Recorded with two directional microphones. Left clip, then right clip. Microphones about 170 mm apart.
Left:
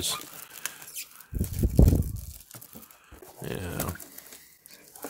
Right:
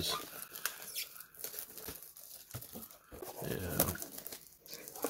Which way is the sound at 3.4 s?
40° left (ahead or behind).